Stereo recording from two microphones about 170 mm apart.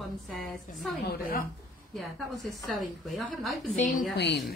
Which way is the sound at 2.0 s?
Centre (ahead or behind).